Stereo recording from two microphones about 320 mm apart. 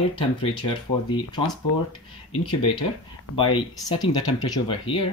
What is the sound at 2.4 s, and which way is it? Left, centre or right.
Speech, centre.